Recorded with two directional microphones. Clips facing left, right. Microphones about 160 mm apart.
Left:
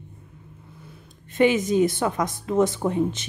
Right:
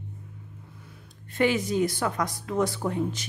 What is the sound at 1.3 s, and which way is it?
Speech, 20° left (ahead or behind).